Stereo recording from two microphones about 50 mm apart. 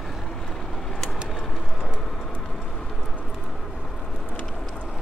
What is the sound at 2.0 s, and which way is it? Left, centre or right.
Vehicle, centre.